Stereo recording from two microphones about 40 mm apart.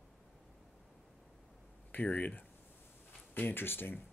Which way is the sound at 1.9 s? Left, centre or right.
Left.